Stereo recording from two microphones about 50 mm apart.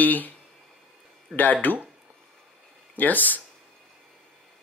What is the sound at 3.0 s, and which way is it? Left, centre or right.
Speech, left.